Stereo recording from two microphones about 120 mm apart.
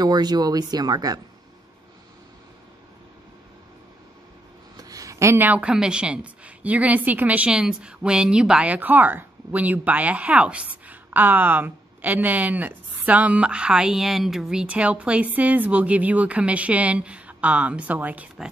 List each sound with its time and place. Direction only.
0.0 s speech: 35° right (ahead or behind)
4.7 s a woman's voice: 30° right (ahead or behind); by 18.5 s 10° right (ahead or behind)